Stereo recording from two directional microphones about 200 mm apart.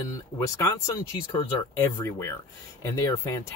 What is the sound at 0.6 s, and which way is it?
Speech, 15° left (ahead or behind).